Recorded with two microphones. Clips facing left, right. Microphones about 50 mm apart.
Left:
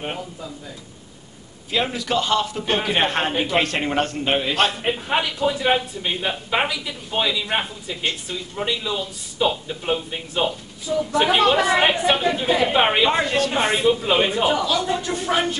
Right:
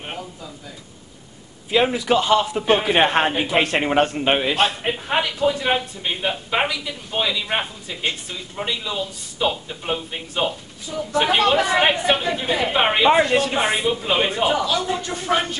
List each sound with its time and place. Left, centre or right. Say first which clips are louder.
1.7 s a man's voice: right 5 dB; centre
4.6 s a man's voice: even; centre